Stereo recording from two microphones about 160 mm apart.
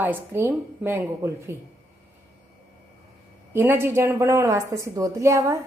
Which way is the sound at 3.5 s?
15° right (ahead or behind).